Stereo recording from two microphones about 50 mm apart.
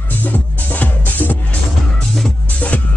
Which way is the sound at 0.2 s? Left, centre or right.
Left.